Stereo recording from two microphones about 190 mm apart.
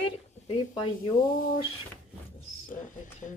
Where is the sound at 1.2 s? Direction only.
45° left (ahead or behind).